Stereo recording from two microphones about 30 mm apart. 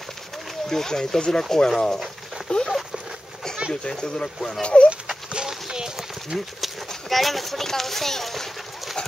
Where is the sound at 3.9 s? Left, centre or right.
Left.